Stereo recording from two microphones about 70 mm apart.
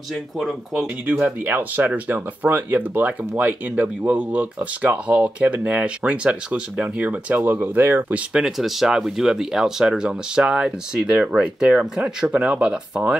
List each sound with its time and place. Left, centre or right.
0.1 s speech: centre
1.0 s speech: right
8.1 s speech: centre
8.5 s speech: centre